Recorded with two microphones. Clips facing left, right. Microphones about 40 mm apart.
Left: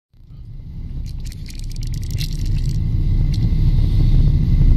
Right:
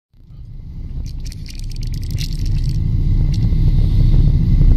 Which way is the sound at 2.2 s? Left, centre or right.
Left.